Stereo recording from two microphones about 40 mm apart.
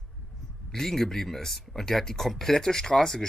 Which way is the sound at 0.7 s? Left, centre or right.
Centre.